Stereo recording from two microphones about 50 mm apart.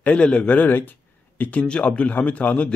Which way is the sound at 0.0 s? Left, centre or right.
Left.